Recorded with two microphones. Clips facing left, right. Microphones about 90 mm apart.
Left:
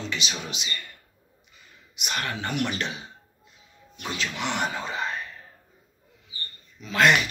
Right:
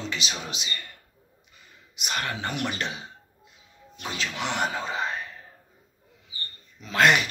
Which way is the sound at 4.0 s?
35° right (ahead or behind).